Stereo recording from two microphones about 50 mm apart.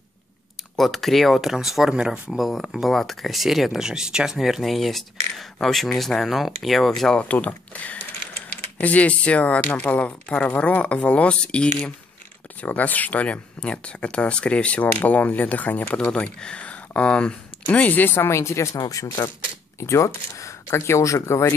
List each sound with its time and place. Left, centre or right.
0.7 s speech: centre
2.0 s speech: centre
2.3 s speech: centre
7.2 s speech: left
12.5 s speech: left
17.7 s speech: left
18.3 s speech: left
19.8 s speech: left